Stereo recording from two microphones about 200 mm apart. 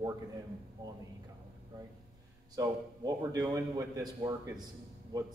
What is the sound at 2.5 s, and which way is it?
A man's voice, 20° right (ahead or behind).